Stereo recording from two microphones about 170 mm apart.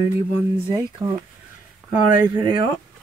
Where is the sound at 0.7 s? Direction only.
25° right (ahead or behind).